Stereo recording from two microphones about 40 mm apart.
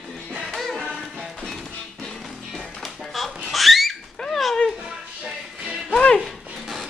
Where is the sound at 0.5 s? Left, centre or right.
Centre.